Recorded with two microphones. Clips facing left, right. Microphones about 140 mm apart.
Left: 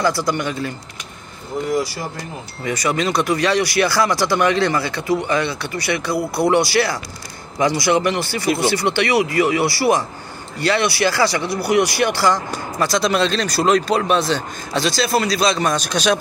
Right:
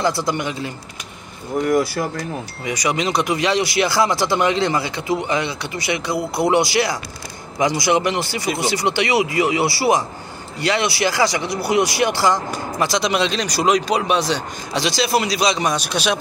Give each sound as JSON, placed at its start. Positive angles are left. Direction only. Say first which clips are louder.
{"t": 0.0, "sound": "speech", "louder": "left 1 dB", "side_deg": -25}
{"t": 1.7, "sound": "speech", "louder": "right 3 dB", "side_deg": -55}
{"t": 2.6, "sound": "speech", "louder": "left 2 dB", "side_deg": -15}